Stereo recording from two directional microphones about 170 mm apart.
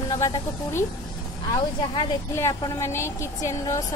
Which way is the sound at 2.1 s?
15° left (ahead or behind).